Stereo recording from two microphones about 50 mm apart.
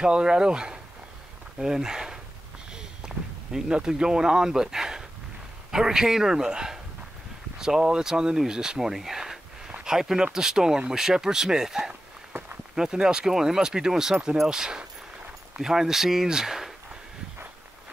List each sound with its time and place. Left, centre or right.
0.0 s speech: centre
2.7 s a sound: centre
5.7 s speech: centre